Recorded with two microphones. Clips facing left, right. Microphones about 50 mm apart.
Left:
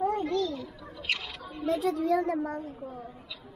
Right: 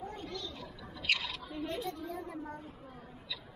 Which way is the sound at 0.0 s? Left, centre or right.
Left.